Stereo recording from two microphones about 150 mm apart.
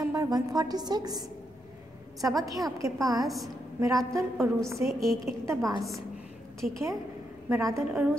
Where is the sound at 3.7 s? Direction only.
20° right (ahead or behind).